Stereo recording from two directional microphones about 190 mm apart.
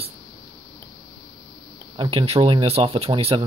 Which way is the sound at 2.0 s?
30° right (ahead or behind).